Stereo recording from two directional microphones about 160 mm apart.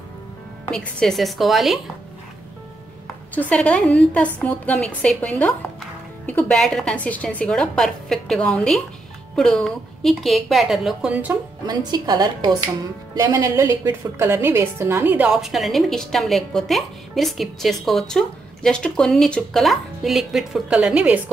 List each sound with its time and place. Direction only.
0.7 s a woman's voice: 5° left (ahead or behind)
3.3 s a woman's voice: 10° left (ahead or behind); by 11.3 s 10° right (ahead or behind)
11.6 s a woman's voice: 25° right (ahead or behind); by 21.2 s 5° right (ahead or behind)